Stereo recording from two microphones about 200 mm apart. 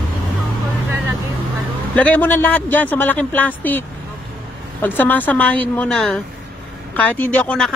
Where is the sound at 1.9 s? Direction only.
5° left (ahead or behind).